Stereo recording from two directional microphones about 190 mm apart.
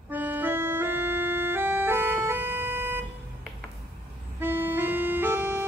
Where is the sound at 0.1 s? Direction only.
10° right (ahead or behind).